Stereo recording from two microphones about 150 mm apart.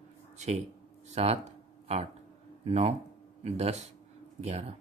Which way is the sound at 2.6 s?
45° right (ahead or behind).